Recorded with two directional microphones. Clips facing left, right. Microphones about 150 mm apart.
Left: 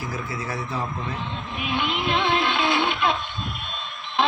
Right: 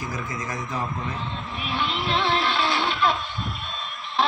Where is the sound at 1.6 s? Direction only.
15° left (ahead or behind).